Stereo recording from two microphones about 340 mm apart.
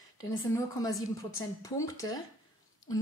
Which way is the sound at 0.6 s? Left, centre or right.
Centre.